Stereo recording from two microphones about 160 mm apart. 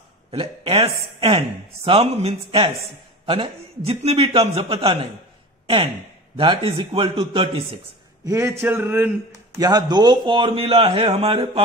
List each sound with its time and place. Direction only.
0.3 s speech: 35° right (ahead or behind)
6.3 s speech: 30° right (ahead or behind)
8.3 s speech: 20° right (ahead or behind)
9.6 s speech: 25° right (ahead or behind)